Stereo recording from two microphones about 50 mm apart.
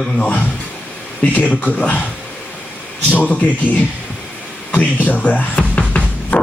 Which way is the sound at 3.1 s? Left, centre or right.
Left.